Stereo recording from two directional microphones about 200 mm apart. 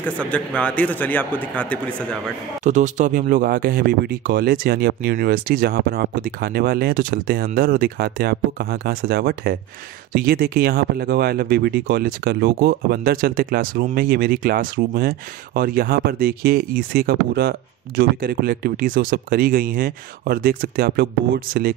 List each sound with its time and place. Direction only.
0.3 s a man's voice: 5° left (ahead or behind)
2.6 s speech: 35° right (ahead or behind)